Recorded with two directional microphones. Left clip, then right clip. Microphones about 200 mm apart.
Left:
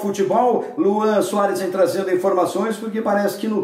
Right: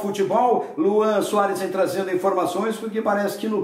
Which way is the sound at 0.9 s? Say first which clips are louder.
Right 1 dB; 10° left (ahead or behind).